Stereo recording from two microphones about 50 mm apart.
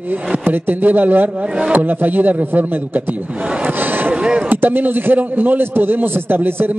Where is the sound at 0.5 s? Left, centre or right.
Right.